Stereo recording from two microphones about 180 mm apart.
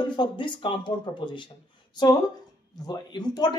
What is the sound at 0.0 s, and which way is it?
Speech, 25° left (ahead or behind).